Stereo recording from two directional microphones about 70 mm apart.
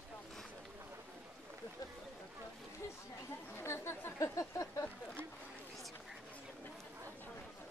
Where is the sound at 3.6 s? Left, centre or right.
Left.